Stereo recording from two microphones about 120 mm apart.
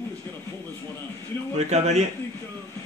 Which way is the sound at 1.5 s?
70° right (ahead or behind).